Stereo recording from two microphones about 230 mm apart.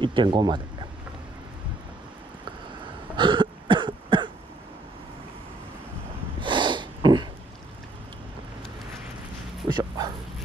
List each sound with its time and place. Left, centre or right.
0.0 s speech: right
3.2 s cough: right
6.4 s snort: centre
9.7 s bow-wow: centre